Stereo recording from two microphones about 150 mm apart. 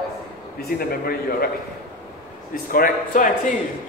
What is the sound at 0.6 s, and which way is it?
Speech, 90° left.